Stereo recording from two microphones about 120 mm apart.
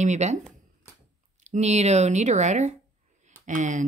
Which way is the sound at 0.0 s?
75° right (ahead or behind).